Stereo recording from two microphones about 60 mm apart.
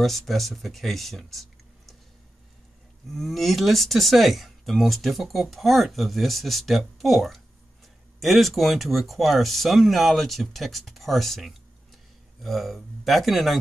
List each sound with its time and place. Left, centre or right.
0.3 s speech: centre
3.1 s speech: centre